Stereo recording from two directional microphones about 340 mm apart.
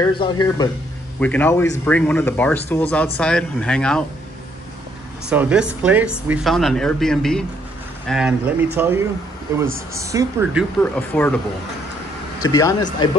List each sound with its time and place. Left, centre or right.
0.0 s speech: centre
5.3 s speech: centre
10.8 s speech: centre
12.4 s speech: centre